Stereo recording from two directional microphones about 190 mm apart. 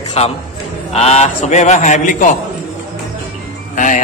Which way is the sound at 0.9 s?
35° left (ahead or behind).